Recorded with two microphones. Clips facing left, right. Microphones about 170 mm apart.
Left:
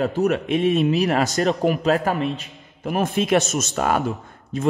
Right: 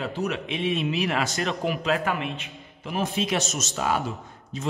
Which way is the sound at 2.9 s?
55° left (ahead or behind).